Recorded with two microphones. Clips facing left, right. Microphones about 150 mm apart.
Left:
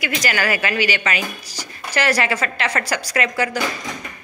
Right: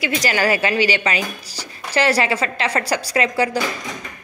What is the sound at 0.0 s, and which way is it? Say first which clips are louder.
Speech: right 3 dB; 30° right (ahead or behind).